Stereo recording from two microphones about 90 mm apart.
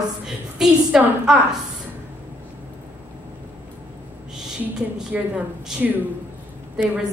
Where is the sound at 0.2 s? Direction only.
5° right (ahead or behind).